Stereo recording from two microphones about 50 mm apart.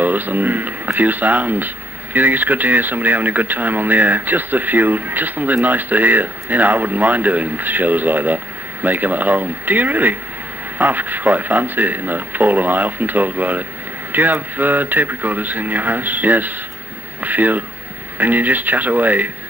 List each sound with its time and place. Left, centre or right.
0.0 s speech: right